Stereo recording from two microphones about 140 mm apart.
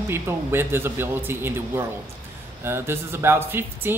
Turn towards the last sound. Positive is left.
turn(degrees=-15)  # may be behind; listen again after turning